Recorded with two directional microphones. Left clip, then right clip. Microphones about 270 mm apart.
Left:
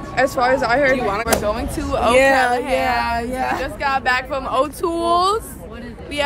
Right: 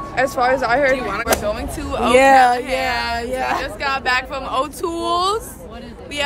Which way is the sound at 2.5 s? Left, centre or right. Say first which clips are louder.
Left 1 dB; centre.